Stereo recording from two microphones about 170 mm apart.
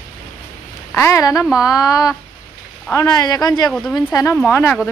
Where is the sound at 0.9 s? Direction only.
15° left (ahead or behind).